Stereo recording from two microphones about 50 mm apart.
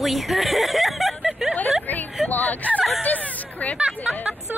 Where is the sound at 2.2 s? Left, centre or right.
Left.